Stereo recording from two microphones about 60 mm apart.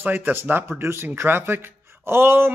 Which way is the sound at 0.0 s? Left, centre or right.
Right.